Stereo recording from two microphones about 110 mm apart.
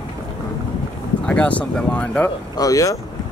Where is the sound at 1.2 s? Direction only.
10° left (ahead or behind).